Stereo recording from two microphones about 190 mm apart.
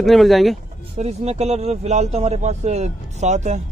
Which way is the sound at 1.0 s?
35° right (ahead or behind).